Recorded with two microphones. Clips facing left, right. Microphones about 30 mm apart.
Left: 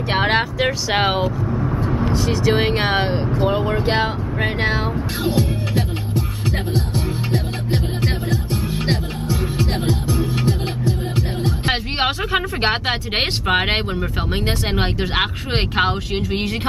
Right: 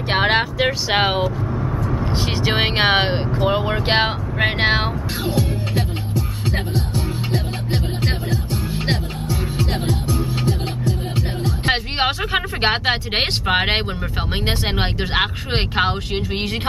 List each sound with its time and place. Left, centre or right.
0.1 s speech: centre
1.5 s vehicle: centre
2.1 s speech: right
5.2 s music: left
8.7 s music: centre
10.0 s music: left
11.7 s speech: centre
15.1 s speech: centre